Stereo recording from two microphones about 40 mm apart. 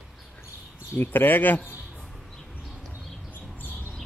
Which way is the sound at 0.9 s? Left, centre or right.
Left.